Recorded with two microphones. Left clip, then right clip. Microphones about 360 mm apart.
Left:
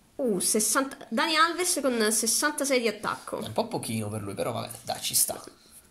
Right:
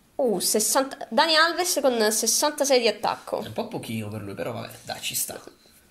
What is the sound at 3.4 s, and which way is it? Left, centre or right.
Speech, centre.